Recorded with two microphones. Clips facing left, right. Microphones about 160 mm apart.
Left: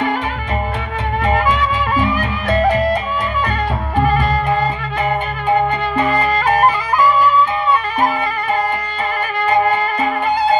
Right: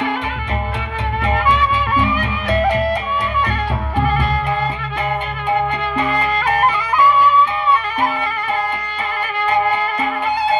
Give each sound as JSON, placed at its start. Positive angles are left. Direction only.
{"t": 1.2, "sound": "music", "side_deg": 45}
{"t": 5.5, "sound": "clarinet", "side_deg": 45}
{"t": 9.4, "sound": "music", "side_deg": 45}